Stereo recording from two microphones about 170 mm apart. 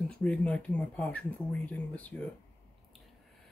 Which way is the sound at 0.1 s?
5° left (ahead or behind).